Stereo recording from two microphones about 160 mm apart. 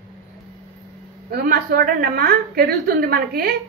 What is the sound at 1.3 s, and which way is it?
A woman's voice, 65° right (ahead or behind).